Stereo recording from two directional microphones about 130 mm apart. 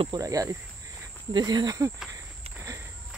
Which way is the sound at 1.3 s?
35° right (ahead or behind).